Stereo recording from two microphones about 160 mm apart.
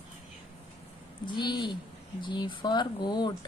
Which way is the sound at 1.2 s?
30° left (ahead or behind).